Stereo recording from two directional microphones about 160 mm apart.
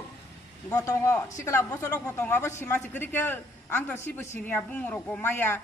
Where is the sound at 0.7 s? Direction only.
20° left (ahead or behind).